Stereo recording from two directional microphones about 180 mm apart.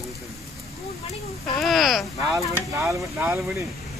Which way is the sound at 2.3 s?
15° right (ahead or behind).